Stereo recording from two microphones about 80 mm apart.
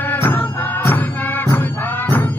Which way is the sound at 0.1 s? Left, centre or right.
Left.